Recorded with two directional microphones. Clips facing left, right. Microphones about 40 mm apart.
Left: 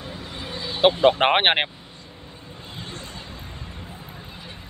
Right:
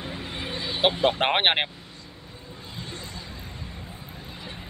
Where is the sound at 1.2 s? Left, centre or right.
Left.